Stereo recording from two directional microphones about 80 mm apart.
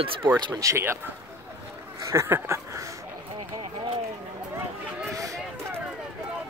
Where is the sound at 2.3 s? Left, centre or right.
Right.